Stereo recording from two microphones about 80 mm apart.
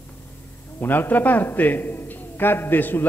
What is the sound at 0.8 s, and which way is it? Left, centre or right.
A man's voice, left.